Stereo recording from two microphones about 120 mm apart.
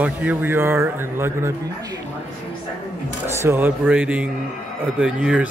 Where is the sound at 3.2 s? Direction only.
20° right (ahead or behind).